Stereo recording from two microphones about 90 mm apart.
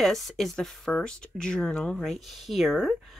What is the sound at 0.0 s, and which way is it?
Speech, centre (ahead or behind).